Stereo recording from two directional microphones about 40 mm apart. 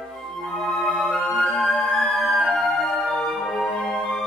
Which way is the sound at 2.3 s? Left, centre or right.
Centre.